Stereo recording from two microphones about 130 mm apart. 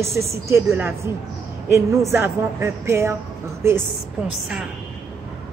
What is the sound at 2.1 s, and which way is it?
Speech, 20° right (ahead or behind).